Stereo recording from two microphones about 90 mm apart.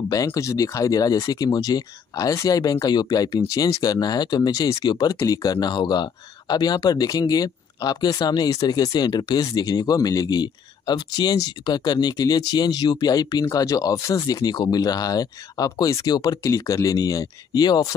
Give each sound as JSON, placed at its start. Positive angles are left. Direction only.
{"t": 0.1, "sound": "speech", "side_deg": 40}
{"t": 16.1, "sound": "speech", "side_deg": 50}